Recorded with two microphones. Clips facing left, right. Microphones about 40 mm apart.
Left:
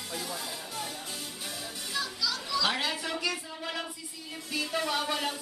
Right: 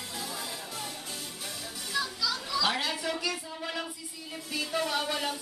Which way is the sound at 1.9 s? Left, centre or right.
Centre.